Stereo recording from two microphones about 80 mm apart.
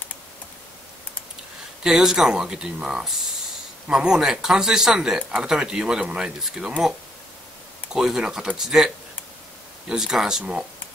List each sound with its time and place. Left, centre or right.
1.8 s speech: centre